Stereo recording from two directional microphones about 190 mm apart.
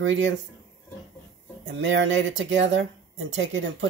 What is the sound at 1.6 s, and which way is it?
Speech, 85° right.